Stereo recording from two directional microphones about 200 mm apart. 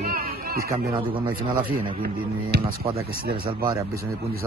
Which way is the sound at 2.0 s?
50° right (ahead or behind).